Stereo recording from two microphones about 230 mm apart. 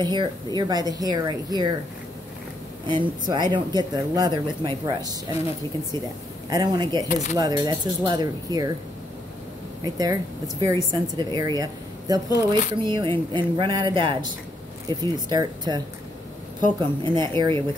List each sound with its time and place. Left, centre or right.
0.0 s speech: centre
2.9 s speech: centre
6.5 s speech: centre
7.1 s speech: left
7.3 s speech: centre
9.9 s speech: centre